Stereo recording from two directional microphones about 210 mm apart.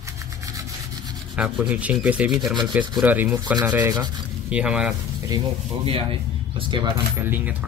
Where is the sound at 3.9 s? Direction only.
20° right (ahead or behind).